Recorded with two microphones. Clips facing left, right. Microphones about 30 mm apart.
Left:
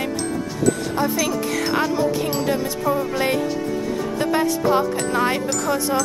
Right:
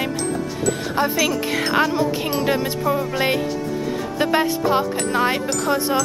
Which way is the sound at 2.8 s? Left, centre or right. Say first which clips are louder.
Even; centre.